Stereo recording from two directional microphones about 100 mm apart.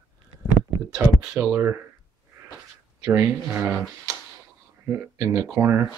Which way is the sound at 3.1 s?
20° right (ahead or behind).